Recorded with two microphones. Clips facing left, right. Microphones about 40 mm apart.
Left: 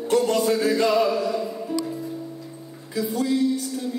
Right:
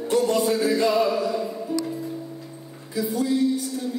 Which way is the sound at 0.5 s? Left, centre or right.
Left.